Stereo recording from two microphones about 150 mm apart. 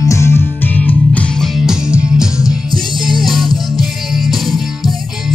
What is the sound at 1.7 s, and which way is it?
Music, 5° right (ahead or behind).